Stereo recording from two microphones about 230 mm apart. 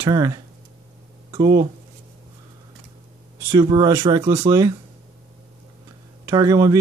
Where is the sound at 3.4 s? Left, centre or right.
Centre.